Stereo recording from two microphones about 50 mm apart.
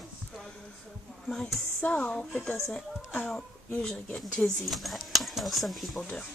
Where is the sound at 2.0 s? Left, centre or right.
Centre.